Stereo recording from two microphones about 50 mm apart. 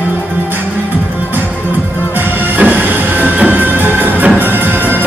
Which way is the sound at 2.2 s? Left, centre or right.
Right.